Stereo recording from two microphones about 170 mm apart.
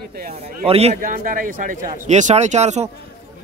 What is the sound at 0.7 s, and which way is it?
Speech, 35° right (ahead or behind).